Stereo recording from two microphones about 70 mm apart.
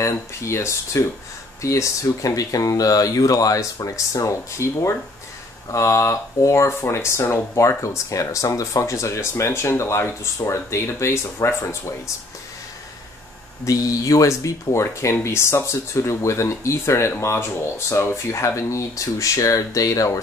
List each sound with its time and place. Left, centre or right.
0.0 s speech: left
13.7 s speech: left